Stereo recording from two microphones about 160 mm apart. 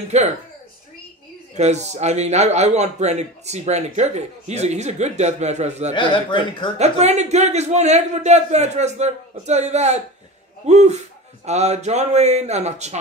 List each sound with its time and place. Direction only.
0.1 s a man's voice: 45° right (ahead or behind)
1.6 s a man's voice: 45° right (ahead or behind)
5.9 s speech: 30° left (ahead or behind)
6.8 s a man's voice: 45° right (ahead or behind)